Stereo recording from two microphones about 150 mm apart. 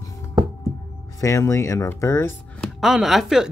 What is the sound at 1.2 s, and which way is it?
Speech, 20° left (ahead or behind).